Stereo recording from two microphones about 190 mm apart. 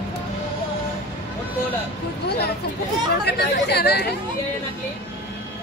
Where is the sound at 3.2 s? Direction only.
60° left (ahead or behind).